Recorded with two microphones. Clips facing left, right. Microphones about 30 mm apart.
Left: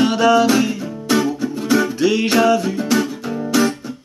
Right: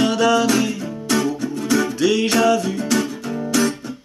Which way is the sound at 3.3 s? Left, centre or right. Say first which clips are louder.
Left 2 dB; centre.